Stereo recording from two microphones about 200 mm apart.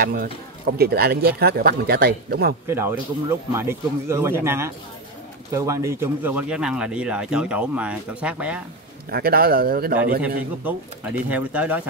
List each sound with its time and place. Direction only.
0.0 s speech: 50° right (ahead or behind)
2.7 s speech: 10° right (ahead or behind)
9.1 s speech: 50° right (ahead or behind)
11.2 s speech: 5° right (ahead or behind)